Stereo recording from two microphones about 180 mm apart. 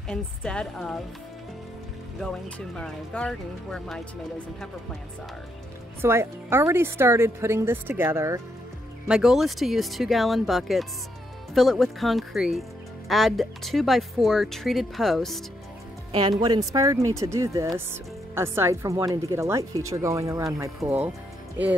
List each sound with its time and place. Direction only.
0.1 s speech: 5° left (ahead or behind)
2.7 s speech: 5° left (ahead or behind)
5.9 s a woman's voice: 15° right (ahead or behind)
9.0 s speech: 5° right (ahead or behind)
16.1 s a woman's voice: 25° right (ahead or behind)